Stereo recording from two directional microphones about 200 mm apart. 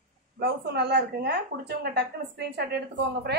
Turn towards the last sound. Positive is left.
turn(degrees=-55)  # may be behind; listen again after turning